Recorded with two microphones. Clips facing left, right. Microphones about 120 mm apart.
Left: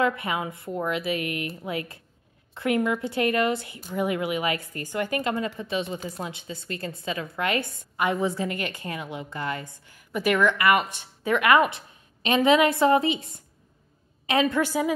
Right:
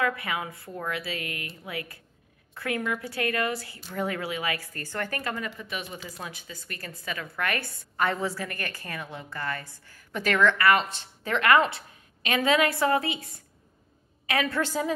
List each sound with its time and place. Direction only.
0.0 s a woman's voice: 25° left (ahead or behind)